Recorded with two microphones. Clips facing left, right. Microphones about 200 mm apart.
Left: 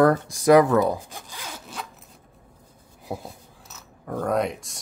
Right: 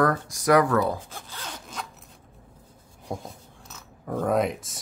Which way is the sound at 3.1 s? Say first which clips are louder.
Left 1 dB; 5° left (ahead or behind).